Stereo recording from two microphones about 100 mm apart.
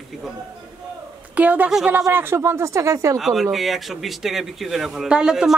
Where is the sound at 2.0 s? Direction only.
25° right (ahead or behind).